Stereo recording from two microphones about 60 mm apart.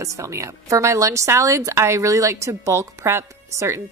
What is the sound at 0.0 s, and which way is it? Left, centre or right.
A woman's voice, right.